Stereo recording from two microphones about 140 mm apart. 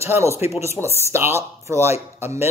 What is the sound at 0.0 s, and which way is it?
A man's voice, 20° right (ahead or behind).